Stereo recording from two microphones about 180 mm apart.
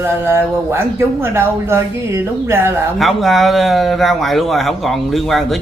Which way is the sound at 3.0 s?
Centre (ahead or behind).